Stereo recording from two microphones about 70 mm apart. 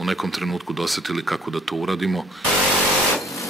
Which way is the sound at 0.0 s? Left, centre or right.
Centre.